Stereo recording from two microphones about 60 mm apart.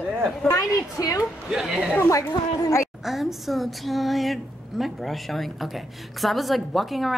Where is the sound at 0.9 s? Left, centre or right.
Left.